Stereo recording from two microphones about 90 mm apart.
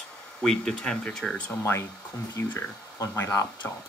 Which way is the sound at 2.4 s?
30° left (ahead or behind).